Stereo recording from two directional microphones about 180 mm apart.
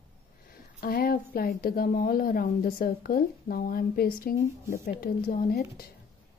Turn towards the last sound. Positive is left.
turn(degrees=55)  # may be behind; listen again after turning